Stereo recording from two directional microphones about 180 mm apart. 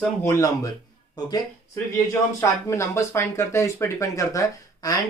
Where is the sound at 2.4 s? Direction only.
15° left (ahead or behind).